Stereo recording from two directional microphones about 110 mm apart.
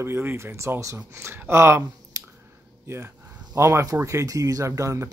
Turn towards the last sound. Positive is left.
turn(degrees=-30)  # may be behind; listen again after turning